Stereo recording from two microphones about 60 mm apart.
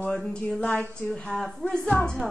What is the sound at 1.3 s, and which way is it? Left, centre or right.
Speech, centre.